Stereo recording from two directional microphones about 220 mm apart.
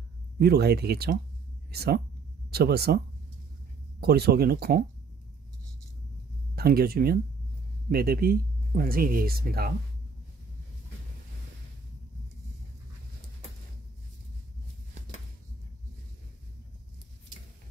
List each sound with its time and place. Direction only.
0.4 s speech: 45° right (ahead or behind)
4.0 s speech: 45° right (ahead or behind)
6.5 s speech: 45° right (ahead or behind)